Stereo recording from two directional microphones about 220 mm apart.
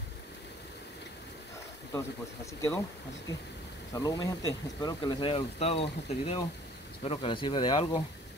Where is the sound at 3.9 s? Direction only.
15° left (ahead or behind).